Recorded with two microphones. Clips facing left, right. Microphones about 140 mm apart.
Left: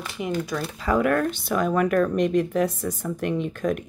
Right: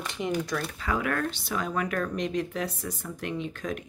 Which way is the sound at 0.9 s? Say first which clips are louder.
Left 8 dB; 45° left (ahead or behind).